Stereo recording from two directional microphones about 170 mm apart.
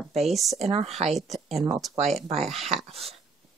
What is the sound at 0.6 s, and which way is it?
Speech, 40° right (ahead or behind).